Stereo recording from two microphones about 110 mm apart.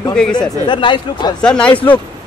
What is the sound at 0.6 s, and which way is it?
Speech, 45° left (ahead or behind).